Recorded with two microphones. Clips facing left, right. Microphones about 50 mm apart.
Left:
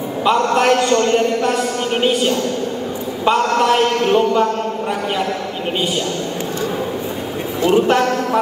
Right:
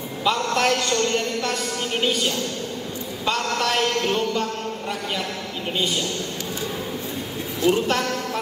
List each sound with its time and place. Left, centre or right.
0.2 s a man's voice: left
7.6 s a man's voice: left